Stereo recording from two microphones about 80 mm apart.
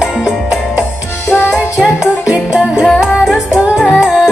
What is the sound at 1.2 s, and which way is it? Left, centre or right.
Music, left.